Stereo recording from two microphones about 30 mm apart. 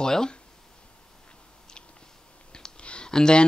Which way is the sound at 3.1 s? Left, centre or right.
Left.